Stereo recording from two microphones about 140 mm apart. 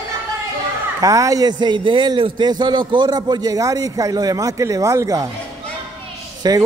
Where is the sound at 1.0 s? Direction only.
25° right (ahead or behind).